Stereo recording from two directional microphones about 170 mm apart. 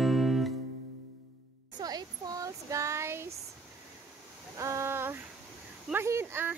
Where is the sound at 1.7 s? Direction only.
25° right (ahead or behind).